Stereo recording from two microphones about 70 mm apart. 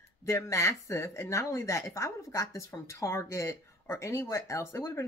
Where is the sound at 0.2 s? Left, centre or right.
Left.